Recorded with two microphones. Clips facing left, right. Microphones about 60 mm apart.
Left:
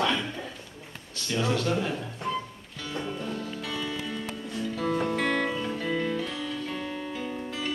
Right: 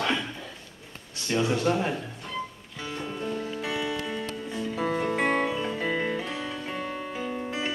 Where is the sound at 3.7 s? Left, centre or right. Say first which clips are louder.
Right 3 dB; right.